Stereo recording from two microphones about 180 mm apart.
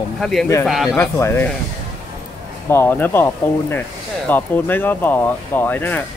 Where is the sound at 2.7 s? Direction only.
10° left (ahead or behind).